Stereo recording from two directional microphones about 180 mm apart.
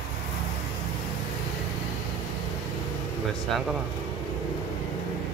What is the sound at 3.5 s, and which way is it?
Speech, centre (ahead or behind).